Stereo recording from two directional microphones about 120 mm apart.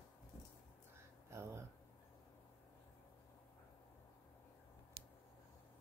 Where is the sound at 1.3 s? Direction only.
20° right (ahead or behind).